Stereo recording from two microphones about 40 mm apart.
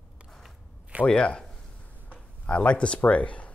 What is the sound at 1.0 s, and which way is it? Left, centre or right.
Speech, left.